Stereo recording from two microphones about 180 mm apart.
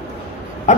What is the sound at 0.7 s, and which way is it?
Pig, 40° left (ahead or behind).